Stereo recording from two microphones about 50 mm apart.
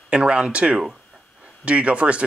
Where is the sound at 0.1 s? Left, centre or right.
Centre.